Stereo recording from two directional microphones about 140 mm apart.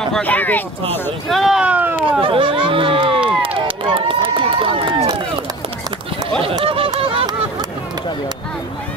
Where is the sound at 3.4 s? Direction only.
40° right (ahead or behind).